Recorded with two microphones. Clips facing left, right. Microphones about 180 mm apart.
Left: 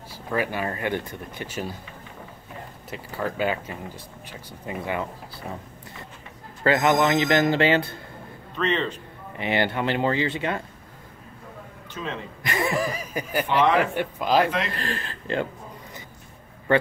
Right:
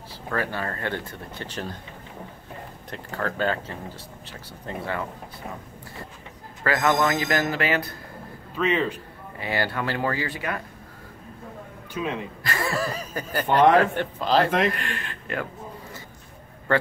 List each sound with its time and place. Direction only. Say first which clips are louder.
0.3 s speech: left 2 dB; 15° left (ahead or behind)
2.9 s speech: even; 10° left (ahead or behind)
6.6 s speech: left 2 dB; 20° left (ahead or behind)
8.5 s speech: right 1 dB; 10° right (ahead or behind)
9.4 s speech: left 3 dB; 20° left (ahead or behind)
11.9 s speech: right 4 dB; 15° right (ahead or behind)
12.4 s speech: left 2 dB; 20° left (ahead or behind)
13.5 s a man's voice: right 4 dB; 50° right (ahead or behind)
13.7 s speech: right 2 dB; 10° left (ahead or behind)
14.7 s a man's voice: even; 35° left (ahead or behind)